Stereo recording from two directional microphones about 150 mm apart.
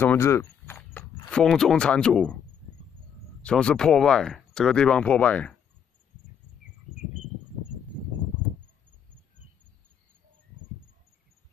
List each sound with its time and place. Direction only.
0.0 s speech: 15° left (ahead or behind)
1.3 s speech: 5° left (ahead or behind)
3.4 s speech: 5° left (ahead or behind)